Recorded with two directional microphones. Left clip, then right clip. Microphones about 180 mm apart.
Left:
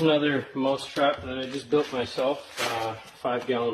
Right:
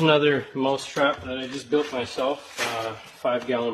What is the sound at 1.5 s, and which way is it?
Speech, 30° right (ahead or behind).